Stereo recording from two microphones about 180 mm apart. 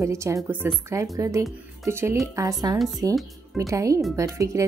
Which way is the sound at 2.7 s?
Centre (ahead or behind).